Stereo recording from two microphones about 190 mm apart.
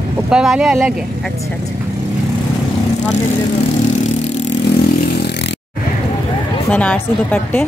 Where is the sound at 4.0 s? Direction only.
40° left (ahead or behind).